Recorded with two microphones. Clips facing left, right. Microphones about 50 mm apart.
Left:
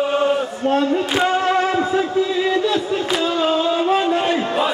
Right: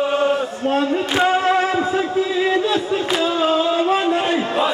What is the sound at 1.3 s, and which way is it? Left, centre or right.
Music, centre.